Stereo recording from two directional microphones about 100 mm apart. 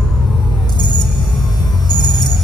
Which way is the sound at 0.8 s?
45° left (ahead or behind).